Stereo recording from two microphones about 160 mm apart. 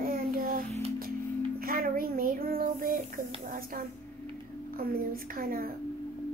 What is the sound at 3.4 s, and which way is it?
Speech, 60° right (ahead or behind).